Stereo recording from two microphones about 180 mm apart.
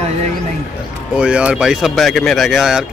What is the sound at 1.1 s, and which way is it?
Speech, 5° right (ahead or behind).